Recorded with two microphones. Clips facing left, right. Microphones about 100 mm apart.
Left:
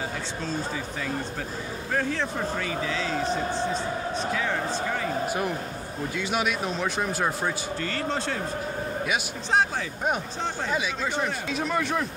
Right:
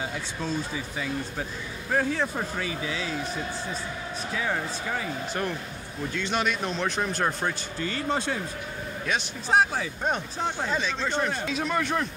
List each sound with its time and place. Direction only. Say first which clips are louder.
2.0 s speech: right 1 dB; 10° right (ahead or behind)
3.3 s a man's voice: left 6 dB; 30° left (ahead or behind)
6.1 s speech: even; 5° left (ahead or behind)
7.8 s speech: right 3 dB; 15° right (ahead or behind)
9.5 s speech: right 1 dB; 5° right (ahead or behind)
10.7 s speech: even; 10° left (ahead or behind)